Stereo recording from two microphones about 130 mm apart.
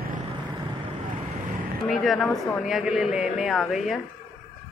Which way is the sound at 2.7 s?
5° right (ahead or behind).